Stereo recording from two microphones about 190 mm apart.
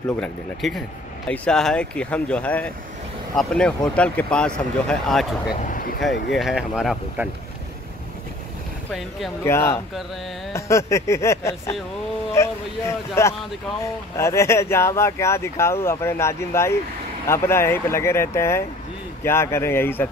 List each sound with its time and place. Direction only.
0.2 s speech: centre (ahead or behind)
5.6 s speech: 45° left (ahead or behind)
6.3 s speech: centre (ahead or behind)
9.4 s speech: 15° left (ahead or behind)